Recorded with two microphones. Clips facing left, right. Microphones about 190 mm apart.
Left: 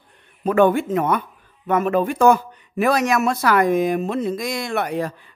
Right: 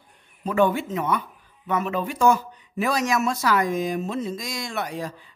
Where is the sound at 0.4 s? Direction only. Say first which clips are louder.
Left 5 dB; 60° left (ahead or behind).